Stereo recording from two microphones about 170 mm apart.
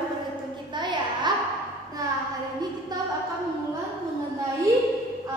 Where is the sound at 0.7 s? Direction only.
25° right (ahead or behind).